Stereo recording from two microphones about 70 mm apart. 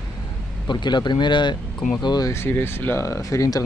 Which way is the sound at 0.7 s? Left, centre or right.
Left.